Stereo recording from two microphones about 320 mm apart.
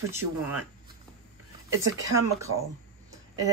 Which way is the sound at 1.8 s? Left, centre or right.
Centre.